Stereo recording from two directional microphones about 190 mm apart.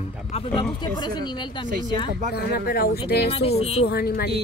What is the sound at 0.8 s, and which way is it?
Speech, 20° left (ahead or behind).